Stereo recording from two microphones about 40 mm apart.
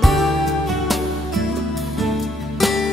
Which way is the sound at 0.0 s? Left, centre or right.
Centre.